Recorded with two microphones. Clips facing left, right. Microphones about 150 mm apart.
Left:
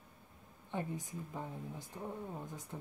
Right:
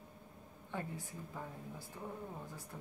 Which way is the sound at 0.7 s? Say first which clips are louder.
Left 3 dB; 20° left (ahead or behind).